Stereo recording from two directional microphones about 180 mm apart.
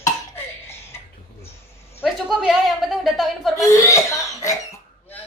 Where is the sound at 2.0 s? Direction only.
Centre (ahead or behind).